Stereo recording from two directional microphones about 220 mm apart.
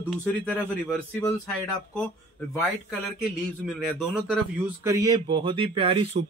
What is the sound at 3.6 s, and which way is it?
Speech, centre (ahead or behind).